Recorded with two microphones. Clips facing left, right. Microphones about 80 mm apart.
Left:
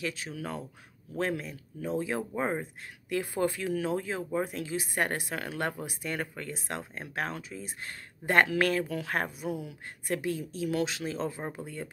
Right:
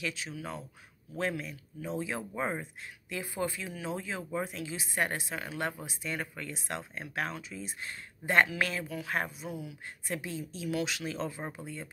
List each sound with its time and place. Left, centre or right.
0.0 s speech: left
1.1 s speech: left
2.3 s speech: left
2.6 s speech: left
4.2 s speech: left
4.5 s speech: left
11.5 s speech: left